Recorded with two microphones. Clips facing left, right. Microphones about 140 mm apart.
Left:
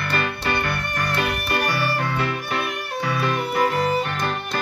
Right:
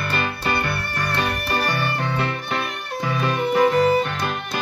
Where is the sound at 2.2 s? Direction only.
25° right (ahead or behind).